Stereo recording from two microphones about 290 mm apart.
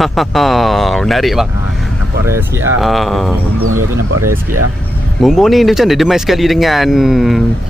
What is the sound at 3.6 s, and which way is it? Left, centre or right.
Speech, right.